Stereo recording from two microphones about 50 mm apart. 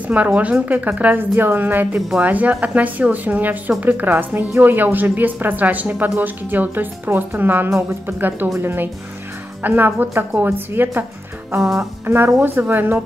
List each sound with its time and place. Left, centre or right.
0.0 s a woman's voice: right
1.1 s speech: right
12.1 s speech: right